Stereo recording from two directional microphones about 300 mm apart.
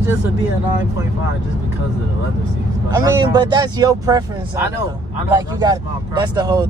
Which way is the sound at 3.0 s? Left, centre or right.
Centre.